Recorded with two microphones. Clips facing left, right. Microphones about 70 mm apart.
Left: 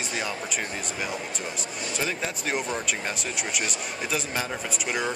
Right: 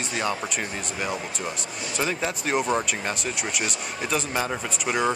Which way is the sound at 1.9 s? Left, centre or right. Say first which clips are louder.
Right 4 dB; centre.